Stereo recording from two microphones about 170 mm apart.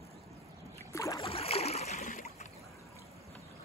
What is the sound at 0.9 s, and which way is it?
Boat, 20° left (ahead or behind).